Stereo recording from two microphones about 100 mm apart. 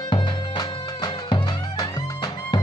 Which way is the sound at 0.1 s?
50° left (ahead or behind).